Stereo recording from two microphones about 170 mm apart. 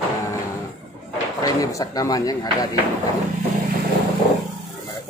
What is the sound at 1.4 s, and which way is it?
Speech, 20° left (ahead or behind).